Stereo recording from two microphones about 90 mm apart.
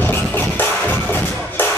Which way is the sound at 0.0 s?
25° left (ahead or behind).